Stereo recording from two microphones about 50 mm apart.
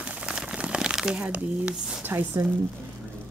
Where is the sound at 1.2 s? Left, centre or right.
Right.